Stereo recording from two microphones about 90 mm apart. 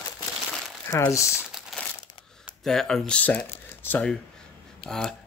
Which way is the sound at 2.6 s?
5° left (ahead or behind).